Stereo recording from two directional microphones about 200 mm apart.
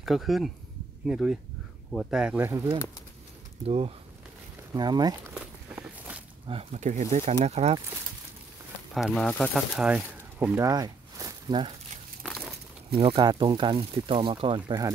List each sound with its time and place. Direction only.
0.0 s speech: centre (ahead or behind); by 2.8 s 15° right (ahead or behind)
3.6 s speech: 30° right (ahead or behind)
5.3 s walk: 5° right (ahead or behind)
6.4 s speech: 30° right (ahead or behind)
8.9 s speech: centre (ahead or behind); by 11.7 s 20° right (ahead or behind)
12.2 s a sound: centre (ahead or behind)
12.9 s speech: 25° right (ahead or behind)